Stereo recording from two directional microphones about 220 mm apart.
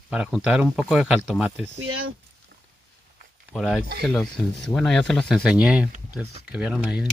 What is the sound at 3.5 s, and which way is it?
Speech, 5° right (ahead or behind).